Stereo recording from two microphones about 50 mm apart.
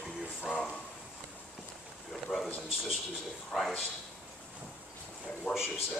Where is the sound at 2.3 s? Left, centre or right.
Left.